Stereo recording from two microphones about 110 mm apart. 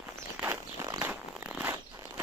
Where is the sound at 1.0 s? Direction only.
15° right (ahead or behind).